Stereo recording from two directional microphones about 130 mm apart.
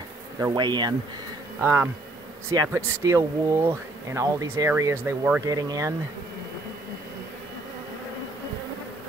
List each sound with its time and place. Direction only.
0.4 s speech: 30° right (ahead or behind)
1.6 s speech: 15° right (ahead or behind)